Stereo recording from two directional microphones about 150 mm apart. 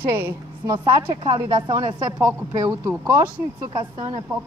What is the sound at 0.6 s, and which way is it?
A woman's voice, 30° right (ahead or behind).